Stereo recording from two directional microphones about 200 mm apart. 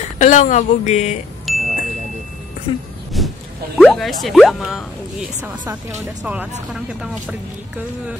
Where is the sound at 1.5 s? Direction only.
Centre (ahead or behind).